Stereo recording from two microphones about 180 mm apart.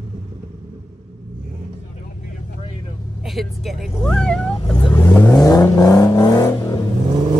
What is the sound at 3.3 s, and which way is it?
Speech, centre (ahead or behind).